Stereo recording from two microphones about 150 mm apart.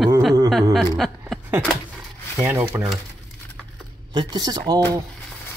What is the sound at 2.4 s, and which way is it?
Speech, 15° right (ahead or behind).